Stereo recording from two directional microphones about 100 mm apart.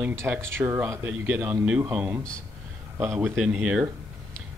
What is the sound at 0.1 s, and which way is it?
Speech, 25° right (ahead or behind).